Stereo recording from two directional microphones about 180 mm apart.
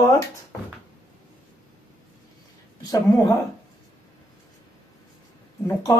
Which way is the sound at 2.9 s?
20° left (ahead or behind).